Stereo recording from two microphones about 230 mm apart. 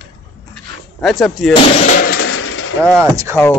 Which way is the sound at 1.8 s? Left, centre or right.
Left.